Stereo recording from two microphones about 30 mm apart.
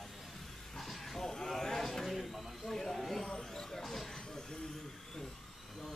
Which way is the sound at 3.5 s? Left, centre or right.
Centre.